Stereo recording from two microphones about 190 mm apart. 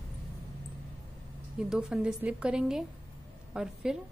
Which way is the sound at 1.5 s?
5° right (ahead or behind).